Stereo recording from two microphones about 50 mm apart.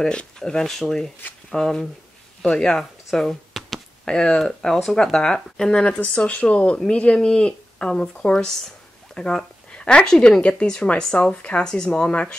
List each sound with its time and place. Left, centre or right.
0.0 s speech: centre
2.8 s a sound: centre
4.0 s speech: centre
5.9 s speech: left; by 10.4 s centre
10.4 s speech: left